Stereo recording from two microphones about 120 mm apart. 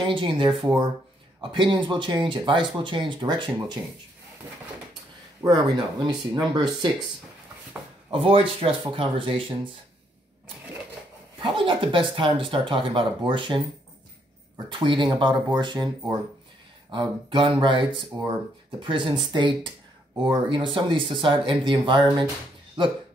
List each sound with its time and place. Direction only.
0.0 s speech: 45° right (ahead or behind)
5.5 s speech: 35° right (ahead or behind)
8.1 s speech: 50° right (ahead or behind)
11.3 s speech: 45° right (ahead or behind)
14.7 s speech: 40° right (ahead or behind)